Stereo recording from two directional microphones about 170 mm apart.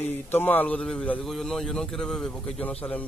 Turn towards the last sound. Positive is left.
turn(degrees=10)  # may be behind; listen again after turning